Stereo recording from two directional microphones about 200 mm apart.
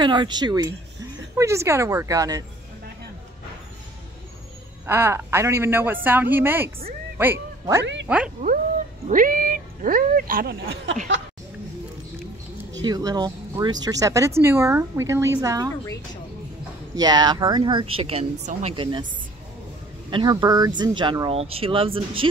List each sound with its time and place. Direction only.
0.0 s speech: 20° right (ahead or behind)
4.8 s speech: 10° right (ahead or behind)
9.0 s speech: 45° right (ahead or behind)
12.8 s speech: 20° right (ahead or behind)
15.8 s a woman's voice: 15° left (ahead or behind)
16.9 s speech: 20° right (ahead or behind)
20.1 s speech: 25° right (ahead or behind)